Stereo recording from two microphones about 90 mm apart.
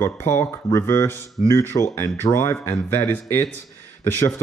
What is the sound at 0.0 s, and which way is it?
Speech, 25° left (ahead or behind).